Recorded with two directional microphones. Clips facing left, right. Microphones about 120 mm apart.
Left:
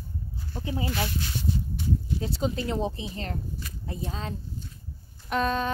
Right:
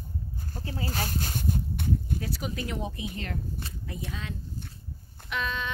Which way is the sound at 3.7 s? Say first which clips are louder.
Even; 30° right (ahead or behind).